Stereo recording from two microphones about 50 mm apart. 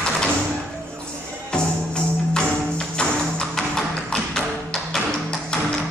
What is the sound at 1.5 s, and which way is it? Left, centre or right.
Tambourine, centre.